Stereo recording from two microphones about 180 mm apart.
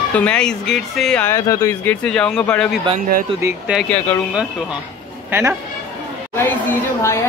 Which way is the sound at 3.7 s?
5° left (ahead or behind).